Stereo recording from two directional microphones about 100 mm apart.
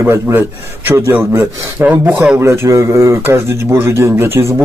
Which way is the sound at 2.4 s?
30° right (ahead or behind).